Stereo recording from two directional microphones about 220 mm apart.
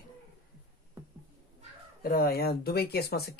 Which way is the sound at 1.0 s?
10° right (ahead or behind).